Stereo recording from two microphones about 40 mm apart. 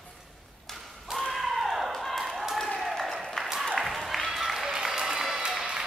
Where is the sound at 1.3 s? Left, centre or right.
Centre.